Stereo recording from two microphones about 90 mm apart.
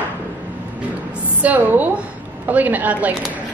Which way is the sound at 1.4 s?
15° right (ahead or behind).